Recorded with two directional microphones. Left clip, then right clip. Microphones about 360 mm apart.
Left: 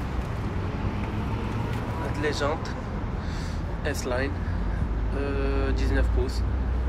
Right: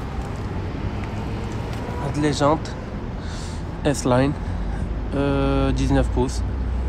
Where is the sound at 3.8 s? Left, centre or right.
Right.